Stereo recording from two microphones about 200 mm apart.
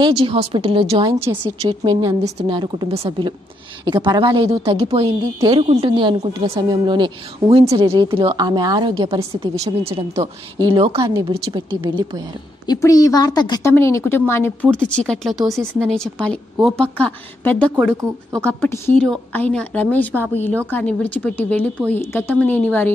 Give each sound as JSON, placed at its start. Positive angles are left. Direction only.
{"t": 0.0, "sound": "speech", "side_deg": -25}
{"t": 9.8, "sound": "speech", "side_deg": -30}
{"t": 12.6, "sound": "a woman's voice", "side_deg": 15}
{"t": 17.7, "sound": "speech", "side_deg": -10}
{"t": 18.4, "sound": "a woman's voice", "side_deg": 10}